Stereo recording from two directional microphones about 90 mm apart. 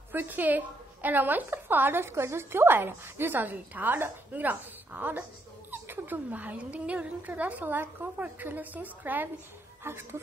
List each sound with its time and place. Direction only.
0.1 s a woman's voice: 20° right (ahead or behind)